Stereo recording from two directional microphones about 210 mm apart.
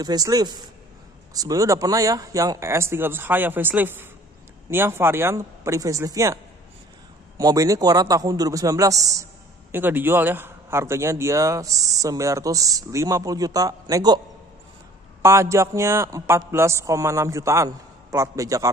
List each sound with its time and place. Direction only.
0.0 s a man's voice: 20° right (ahead or behind)
15.2 s a man's voice: 15° right (ahead or behind)